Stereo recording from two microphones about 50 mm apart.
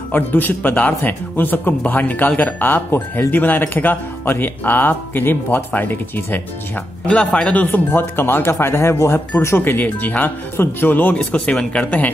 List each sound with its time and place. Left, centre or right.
0.1 s speech: left
7.1 s speech: centre
7.5 s speech: left
7.9 s speech: left
8.4 s speech: left
9.6 s speech: left
11.3 s speech: left